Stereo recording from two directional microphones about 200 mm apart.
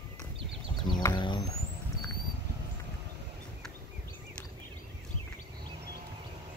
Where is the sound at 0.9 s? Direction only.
20° left (ahead or behind).